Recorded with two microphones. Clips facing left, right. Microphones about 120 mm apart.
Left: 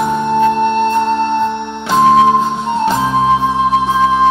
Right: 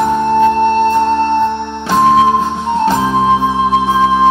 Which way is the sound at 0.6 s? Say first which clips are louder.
Right 2 dB; 45° right (ahead or behind).